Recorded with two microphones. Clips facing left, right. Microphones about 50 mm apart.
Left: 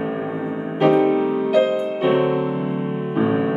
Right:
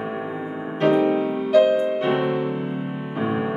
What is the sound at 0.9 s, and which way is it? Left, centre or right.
Music, left.